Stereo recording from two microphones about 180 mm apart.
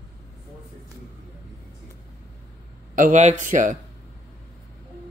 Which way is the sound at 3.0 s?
40° right (ahead or behind).